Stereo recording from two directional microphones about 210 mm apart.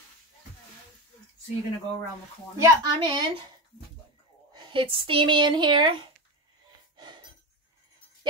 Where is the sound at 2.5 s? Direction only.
15° right (ahead or behind).